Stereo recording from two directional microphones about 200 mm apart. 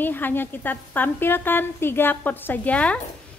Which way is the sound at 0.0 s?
10° left (ahead or behind).